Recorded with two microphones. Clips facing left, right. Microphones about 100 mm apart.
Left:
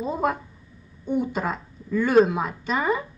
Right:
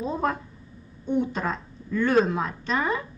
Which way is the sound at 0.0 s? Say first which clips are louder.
Left 2 dB; 5° left (ahead or behind).